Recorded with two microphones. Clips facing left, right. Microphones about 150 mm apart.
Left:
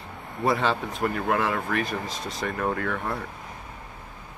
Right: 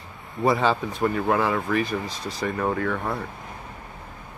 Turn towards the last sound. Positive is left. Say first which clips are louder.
# right 2 dB
turn(degrees=0)  # may be behind; listen again after turning